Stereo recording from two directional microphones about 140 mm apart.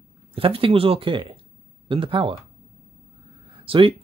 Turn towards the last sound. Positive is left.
turn(degrees=-40)  # may be behind; listen again after turning